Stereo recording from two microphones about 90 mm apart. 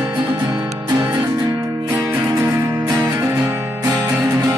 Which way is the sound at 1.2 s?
35° right (ahead or behind).